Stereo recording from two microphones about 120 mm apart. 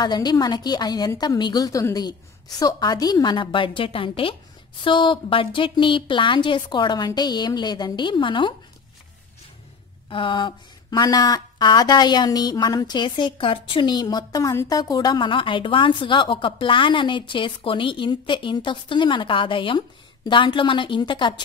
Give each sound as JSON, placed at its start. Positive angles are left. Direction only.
{"t": 0.0, "sound": "a woman's voice", "side_deg": 35}
{"t": 10.0, "sound": "speech", "side_deg": 45}